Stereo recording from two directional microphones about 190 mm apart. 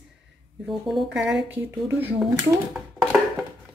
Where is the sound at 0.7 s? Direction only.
Centre (ahead or behind).